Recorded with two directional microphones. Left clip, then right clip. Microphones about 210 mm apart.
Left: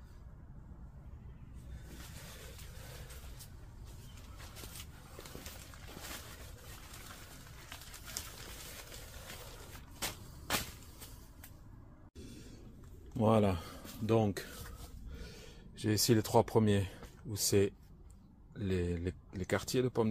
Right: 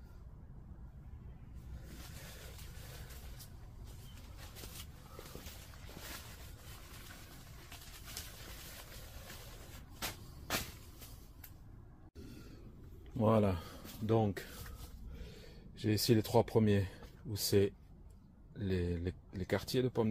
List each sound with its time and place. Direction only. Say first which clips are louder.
9.9 s shuffle: left 2 dB; 40° left (ahead or behind)
13.2 s speech: left 2 dB; 10° left (ahead or behind)
15.7 s speech: left 1 dB; 10° left (ahead or behind)